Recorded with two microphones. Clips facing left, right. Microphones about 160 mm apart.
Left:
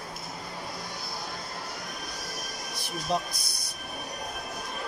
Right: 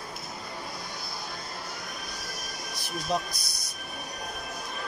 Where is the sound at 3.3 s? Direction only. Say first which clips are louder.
Even; 55° left (ahead or behind).